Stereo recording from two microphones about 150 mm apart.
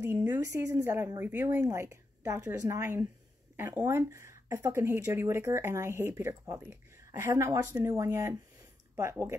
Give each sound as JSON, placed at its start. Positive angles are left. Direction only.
{"t": 0.0, "sound": "speech", "side_deg": -15}